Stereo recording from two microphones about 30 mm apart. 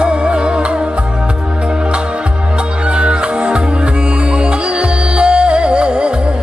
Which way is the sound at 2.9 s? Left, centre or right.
Right.